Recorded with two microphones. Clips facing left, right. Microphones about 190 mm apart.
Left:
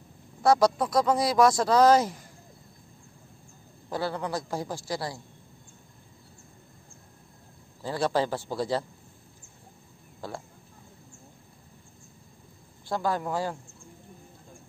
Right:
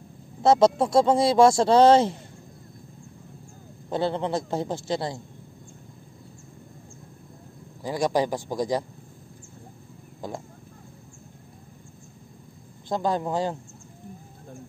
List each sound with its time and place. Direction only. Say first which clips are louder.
0.4 s speech: right 3 dB; 25° right (ahead or behind)
3.9 s speech: right 5 dB; 25° right (ahead or behind)
7.8 s a man's voice: right 3 dB; 15° right (ahead or behind)
10.2 s a man's voice: right 3 dB; 15° right (ahead or behind)
12.8 s speech: right 3 dB; 20° right (ahead or behind)